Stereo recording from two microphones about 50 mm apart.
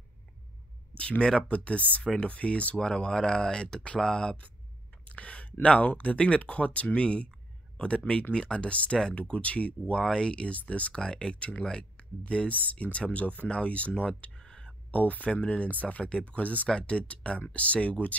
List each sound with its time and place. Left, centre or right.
1.5 s speech: left
14.9 s speech: left